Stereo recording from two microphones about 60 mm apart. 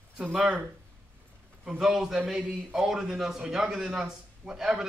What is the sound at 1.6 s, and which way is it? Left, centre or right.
A man's voice, centre.